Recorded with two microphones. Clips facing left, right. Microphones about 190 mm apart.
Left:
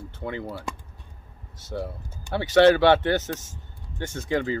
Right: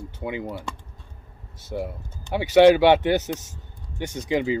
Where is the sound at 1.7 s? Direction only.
10° right (ahead or behind).